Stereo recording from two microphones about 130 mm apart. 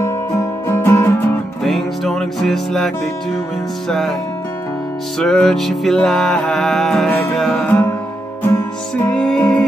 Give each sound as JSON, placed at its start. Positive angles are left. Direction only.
{"t": 0.0, "sound": "music", "side_deg": 20}
{"t": 1.6, "sound": "music", "side_deg": 0}
{"t": 5.2, "sound": "music", "side_deg": 5}
{"t": 7.6, "sound": "music", "side_deg": 15}
{"t": 9.1, "sound": "music", "side_deg": 5}